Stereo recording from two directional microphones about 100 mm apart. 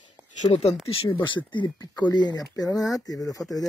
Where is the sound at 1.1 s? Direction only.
50° left (ahead or behind).